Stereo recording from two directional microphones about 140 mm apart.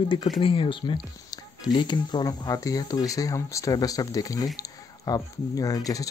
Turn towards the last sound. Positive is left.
turn(degrees=25)  # may be behind; listen again after turning